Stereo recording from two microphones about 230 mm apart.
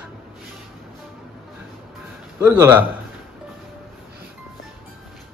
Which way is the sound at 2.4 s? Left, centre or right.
Centre.